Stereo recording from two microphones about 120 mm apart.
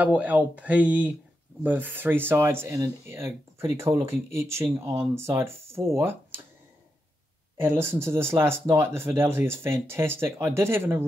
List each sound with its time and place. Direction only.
0.0 s speech: 10° right (ahead or behind)
7.6 s speech: 20° right (ahead or behind)